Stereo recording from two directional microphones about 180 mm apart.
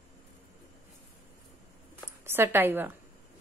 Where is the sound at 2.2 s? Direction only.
10° right (ahead or behind).